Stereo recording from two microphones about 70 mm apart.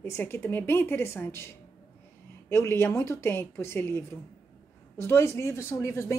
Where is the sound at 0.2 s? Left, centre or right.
Left.